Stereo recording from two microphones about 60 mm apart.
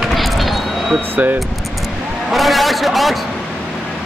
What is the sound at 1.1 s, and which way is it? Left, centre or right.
Speech, right.